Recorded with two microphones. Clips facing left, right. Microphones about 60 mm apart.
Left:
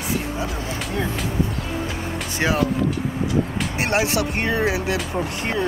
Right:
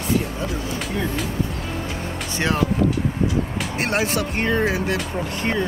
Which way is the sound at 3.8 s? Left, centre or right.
Centre.